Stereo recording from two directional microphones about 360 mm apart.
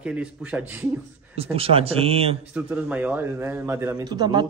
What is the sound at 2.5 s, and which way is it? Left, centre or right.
A man's voice, centre.